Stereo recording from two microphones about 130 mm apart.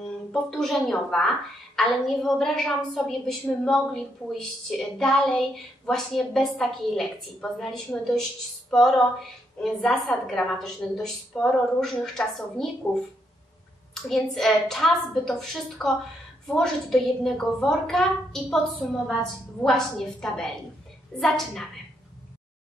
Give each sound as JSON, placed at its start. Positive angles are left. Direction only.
{"t": 0.0, "sound": "a woman's voice", "side_deg": 5}
{"t": 8.6, "sound": "female singing", "side_deg": 5}
{"t": 9.6, "sound": "a woman's voice", "side_deg": 0}
{"t": 14.0, "sound": "a woman's voice", "side_deg": 5}